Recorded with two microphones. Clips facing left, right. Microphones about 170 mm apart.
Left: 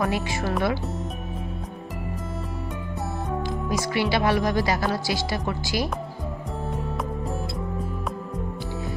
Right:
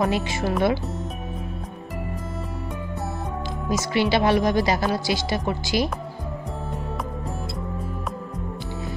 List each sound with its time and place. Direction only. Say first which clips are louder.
0.0 s speech: right 2 dB; 20° right (ahead or behind)
3.9 s speech: right 3 dB; 25° right (ahead or behind)